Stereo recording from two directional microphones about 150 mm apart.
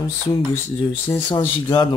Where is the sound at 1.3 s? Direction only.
30° left (ahead or behind).